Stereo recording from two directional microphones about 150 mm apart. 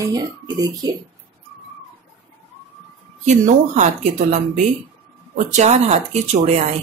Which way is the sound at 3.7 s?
55° right (ahead or behind).